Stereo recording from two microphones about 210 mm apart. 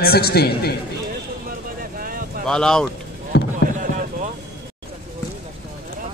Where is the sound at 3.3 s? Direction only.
50° left (ahead or behind).